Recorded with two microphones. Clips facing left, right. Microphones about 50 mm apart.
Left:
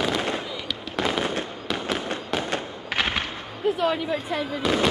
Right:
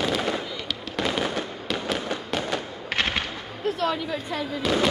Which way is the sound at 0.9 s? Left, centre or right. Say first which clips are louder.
Left 1 dB; centre.